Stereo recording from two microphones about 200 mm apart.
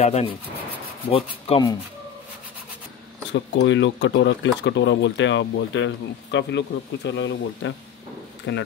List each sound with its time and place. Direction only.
0.0 s speech: 30° left (ahead or behind)
3.3 s speech: 65° left (ahead or behind)